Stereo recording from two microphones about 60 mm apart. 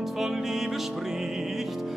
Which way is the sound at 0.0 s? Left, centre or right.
Centre.